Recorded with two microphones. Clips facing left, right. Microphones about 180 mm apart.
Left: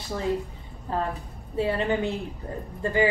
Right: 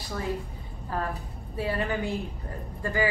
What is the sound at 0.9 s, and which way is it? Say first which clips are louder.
A woman's voice: left 3 dB; 25° left (ahead or behind).